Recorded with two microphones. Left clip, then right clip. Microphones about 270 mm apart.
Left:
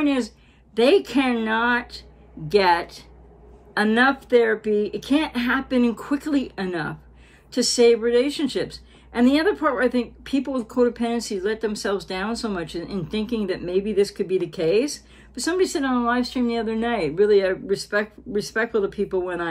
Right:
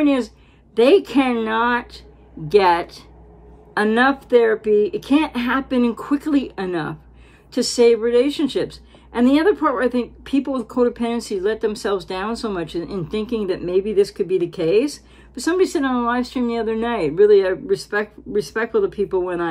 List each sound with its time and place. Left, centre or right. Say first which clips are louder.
0.0 s speech: right 4 dB; centre